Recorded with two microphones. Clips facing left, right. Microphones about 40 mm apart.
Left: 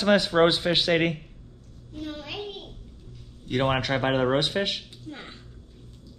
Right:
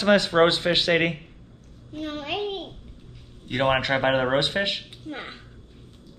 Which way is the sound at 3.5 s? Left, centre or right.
Right.